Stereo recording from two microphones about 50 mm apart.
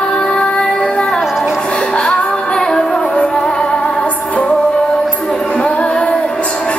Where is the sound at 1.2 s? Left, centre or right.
Centre.